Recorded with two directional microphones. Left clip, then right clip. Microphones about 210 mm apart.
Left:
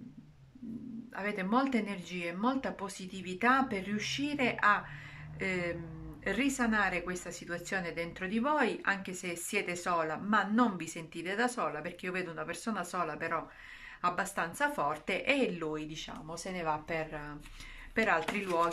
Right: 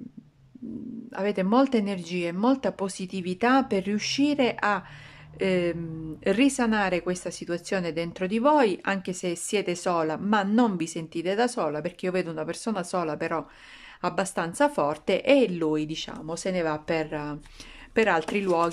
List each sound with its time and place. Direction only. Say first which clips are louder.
1.1 s speech: right 8 dB; 40° right (ahead or behind)